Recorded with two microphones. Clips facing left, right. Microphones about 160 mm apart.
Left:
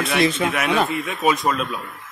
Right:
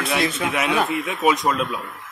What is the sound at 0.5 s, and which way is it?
Speech, 15° right (ahead or behind).